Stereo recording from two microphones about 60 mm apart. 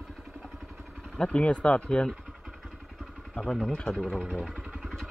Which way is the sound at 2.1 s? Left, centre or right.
Centre.